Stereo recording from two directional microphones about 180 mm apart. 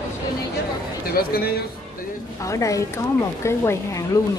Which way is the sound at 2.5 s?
15° left (ahead or behind).